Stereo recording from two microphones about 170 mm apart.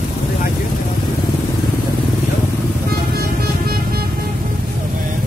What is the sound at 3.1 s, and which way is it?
Music, 65° right (ahead or behind).